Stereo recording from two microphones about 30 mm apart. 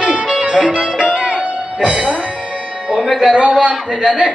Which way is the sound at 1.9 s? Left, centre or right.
Right.